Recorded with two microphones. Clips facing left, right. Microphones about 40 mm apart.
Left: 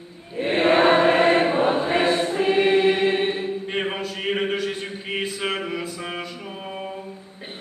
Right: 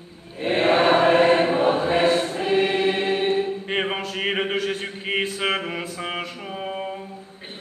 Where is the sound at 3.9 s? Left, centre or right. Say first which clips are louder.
Right 2 dB; right.